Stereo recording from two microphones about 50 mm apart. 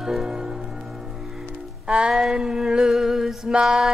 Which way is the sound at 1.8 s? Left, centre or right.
Right.